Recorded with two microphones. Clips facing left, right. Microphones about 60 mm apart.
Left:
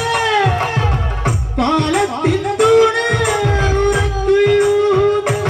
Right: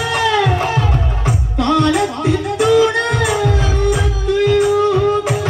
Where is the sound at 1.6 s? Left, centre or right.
Left.